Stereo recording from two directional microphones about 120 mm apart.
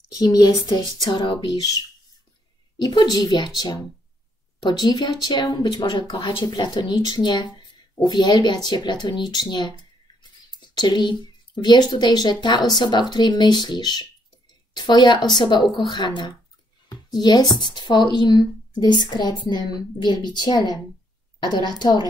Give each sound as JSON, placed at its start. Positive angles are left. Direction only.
{"t": 0.1, "sound": "speech", "side_deg": 35}
{"t": 2.8, "sound": "speech", "side_deg": 35}